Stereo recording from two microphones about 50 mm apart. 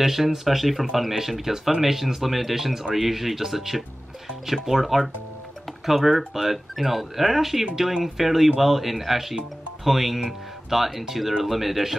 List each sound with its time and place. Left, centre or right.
0.0 s speech: centre